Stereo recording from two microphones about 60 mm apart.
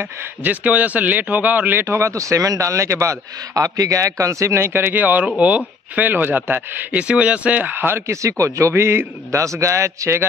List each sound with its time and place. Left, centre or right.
0.0 s a man's voice: right
1.9 s a man's voice: right
6.9 s a man's voice: centre
8.1 s a man's voice: right